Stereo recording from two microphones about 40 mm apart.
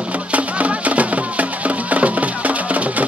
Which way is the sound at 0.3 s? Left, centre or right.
Right.